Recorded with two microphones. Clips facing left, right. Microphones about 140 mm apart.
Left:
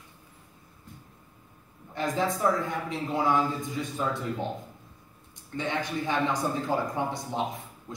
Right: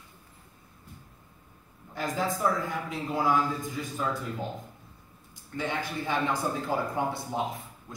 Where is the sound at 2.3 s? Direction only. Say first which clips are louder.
Left 2 dB; centre (ahead or behind).